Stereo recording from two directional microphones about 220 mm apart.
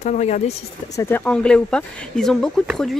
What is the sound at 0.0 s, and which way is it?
Speech, 30° left (ahead or behind).